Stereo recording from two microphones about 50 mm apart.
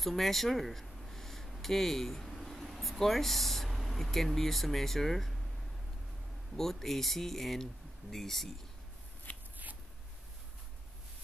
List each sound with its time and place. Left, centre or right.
0.0 s speech: centre
6.5 s speech: centre
9.3 s a sound: left